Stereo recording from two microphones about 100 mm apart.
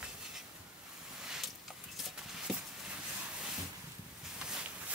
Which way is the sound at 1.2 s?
5° right (ahead or behind).